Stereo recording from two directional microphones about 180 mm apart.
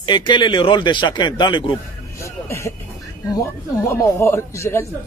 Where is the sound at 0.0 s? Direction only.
25° left (ahead or behind).